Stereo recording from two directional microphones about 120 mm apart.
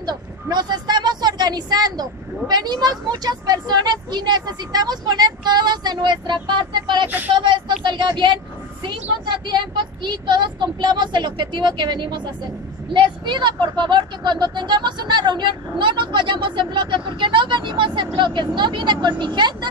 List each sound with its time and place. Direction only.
0.0 s speech: 35° right (ahead or behind)
7.1 s speech: 15° right (ahead or behind)
7.3 s speech: 40° right (ahead or behind)